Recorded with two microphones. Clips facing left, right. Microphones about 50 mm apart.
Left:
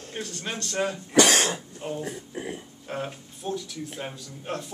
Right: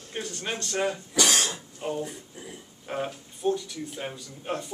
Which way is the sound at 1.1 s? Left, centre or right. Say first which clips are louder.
Left 5 dB; left.